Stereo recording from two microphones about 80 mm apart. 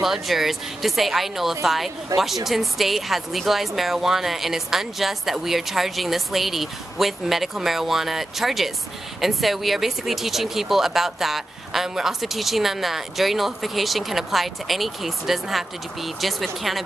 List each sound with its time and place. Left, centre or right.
0.0 s speech: centre
2.1 s speech: right
2.4 s speech: centre